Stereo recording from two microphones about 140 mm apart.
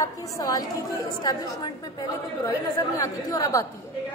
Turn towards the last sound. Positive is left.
turn(degrees=25)  # may be behind; listen again after turning